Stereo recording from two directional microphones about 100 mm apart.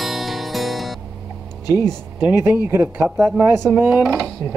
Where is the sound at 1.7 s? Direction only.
40° left (ahead or behind).